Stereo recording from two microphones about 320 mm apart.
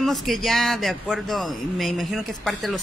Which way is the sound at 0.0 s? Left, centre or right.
Centre.